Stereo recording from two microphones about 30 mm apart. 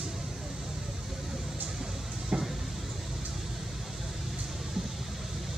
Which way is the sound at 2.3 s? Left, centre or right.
Right.